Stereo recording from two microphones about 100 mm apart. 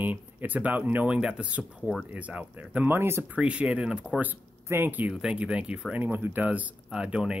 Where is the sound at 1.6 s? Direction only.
Centre (ahead or behind).